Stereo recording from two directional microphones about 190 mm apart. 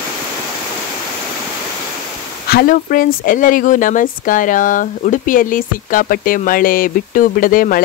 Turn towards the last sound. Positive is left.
turn(degrees=45)  # may be behind; listen again after turning